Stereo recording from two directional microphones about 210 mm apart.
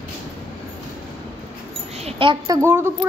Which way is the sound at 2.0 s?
25° right (ahead or behind).